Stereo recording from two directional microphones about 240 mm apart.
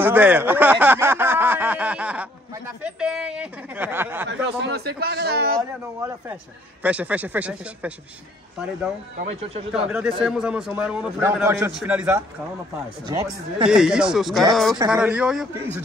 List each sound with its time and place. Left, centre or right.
0.0 s a sound: centre
4.3 s a man's voice: right
5.6 s speech: centre
9.2 s speech: right
9.7 s a man's voice: centre
13.7 s a man's voice: centre